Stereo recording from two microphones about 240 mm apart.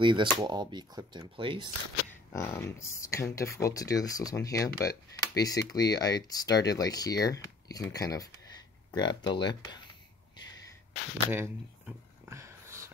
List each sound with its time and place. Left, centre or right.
0.0 s speech: centre
2.3 s speech: centre
11.2 s a sound: centre